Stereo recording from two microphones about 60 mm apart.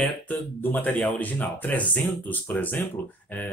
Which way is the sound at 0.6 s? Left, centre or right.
Left.